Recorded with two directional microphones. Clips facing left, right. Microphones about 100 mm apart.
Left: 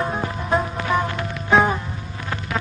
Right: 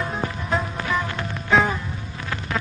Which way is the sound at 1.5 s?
25° left (ahead or behind).